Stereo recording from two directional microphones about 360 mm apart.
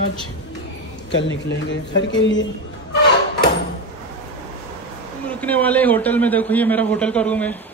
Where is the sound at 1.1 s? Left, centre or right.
Left.